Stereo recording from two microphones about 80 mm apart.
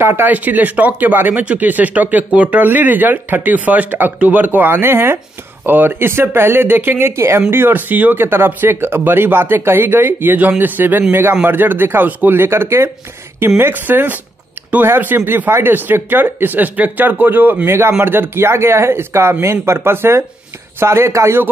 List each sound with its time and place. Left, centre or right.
0.0 s speech: right